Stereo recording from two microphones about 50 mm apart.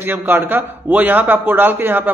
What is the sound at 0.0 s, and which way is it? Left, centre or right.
A man's voice, right.